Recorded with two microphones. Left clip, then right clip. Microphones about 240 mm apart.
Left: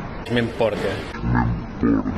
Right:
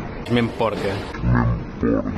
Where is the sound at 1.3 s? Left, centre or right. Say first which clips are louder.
Left 1 dB; right.